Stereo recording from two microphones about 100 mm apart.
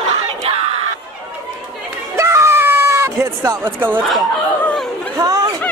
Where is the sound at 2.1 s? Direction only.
30° right (ahead or behind).